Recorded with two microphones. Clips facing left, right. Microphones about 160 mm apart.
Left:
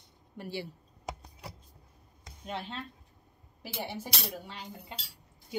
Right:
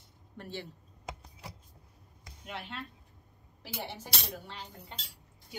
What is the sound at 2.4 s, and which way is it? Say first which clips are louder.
Speech: left 4 dB; 30° left (ahead or behind).